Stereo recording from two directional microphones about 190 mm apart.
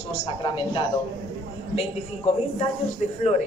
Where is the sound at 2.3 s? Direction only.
35° left (ahead or behind).